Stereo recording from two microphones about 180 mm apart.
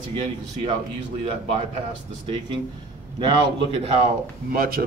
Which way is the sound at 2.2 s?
30° right (ahead or behind).